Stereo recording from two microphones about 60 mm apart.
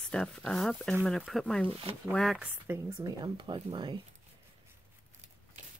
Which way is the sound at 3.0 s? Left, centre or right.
Right.